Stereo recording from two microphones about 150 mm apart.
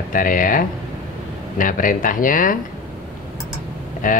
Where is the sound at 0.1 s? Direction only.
65° left (ahead or behind).